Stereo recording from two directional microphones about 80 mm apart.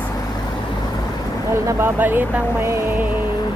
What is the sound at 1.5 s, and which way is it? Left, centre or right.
Speech, right.